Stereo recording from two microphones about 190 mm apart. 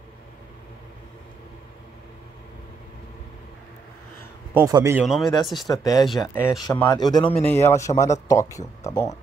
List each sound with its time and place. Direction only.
4.6 s speech: 15° right (ahead or behind)
5.0 s speech: centre (ahead or behind)
5.7 s a man's voice: 20° left (ahead or behind)
6.0 s speech: centre (ahead or behind)
6.9 s a man's voice: 20° left (ahead or behind)
7.4 s speech: 10° left (ahead or behind)